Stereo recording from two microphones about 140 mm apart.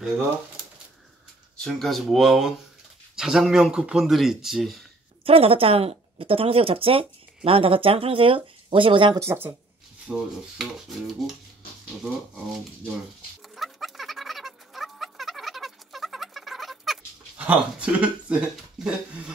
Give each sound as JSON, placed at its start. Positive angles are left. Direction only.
{"t": 1.6, "sound": "speech", "side_deg": 0}
{"t": 5.2, "sound": "speech", "side_deg": -45}
{"t": 9.2, "sound": "speech", "side_deg": -15}
{"t": 10.1, "sound": "speech", "side_deg": -5}
{"t": 13.6, "sound": "a sound", "side_deg": 0}